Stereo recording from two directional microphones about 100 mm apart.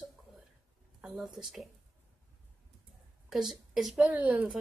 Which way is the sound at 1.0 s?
5° right (ahead or behind).